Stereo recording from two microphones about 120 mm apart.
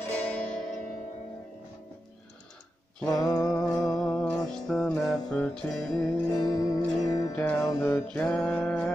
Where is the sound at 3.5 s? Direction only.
10° left (ahead or behind).